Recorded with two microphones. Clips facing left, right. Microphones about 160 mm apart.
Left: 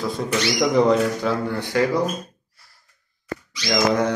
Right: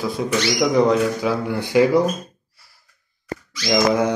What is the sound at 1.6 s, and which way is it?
Speech, 15° right (ahead or behind).